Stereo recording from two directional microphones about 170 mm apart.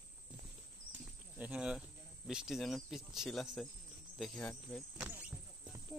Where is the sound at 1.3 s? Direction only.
5° right (ahead or behind).